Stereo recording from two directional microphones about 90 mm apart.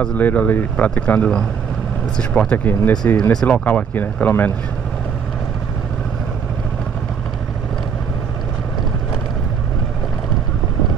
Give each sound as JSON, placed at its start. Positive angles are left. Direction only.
{"t": 0.0, "sound": "speech", "side_deg": 15}
{"t": 2.5, "sound": "speech", "side_deg": 20}